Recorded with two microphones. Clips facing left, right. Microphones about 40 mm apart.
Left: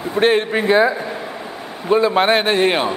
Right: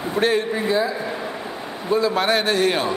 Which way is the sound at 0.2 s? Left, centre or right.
Left.